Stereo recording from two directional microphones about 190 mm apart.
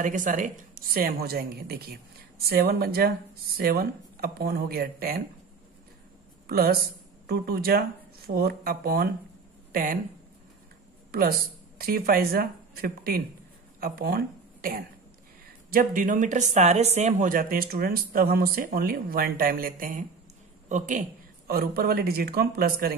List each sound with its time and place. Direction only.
0.0 s a woman's voice: 40° right (ahead or behind)
6.5 s a woman's voice: 50° right (ahead or behind)
9.7 s a sound: 50° right (ahead or behind)
11.1 s a woman's voice: 50° right (ahead or behind)
21.5 s a woman's voice: 55° right (ahead or behind)